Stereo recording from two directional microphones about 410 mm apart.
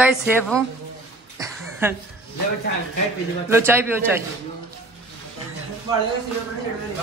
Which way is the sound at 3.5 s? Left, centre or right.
Centre.